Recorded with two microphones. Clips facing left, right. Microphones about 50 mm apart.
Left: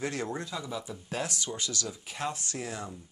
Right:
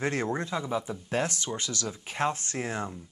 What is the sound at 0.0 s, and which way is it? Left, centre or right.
Speech, right.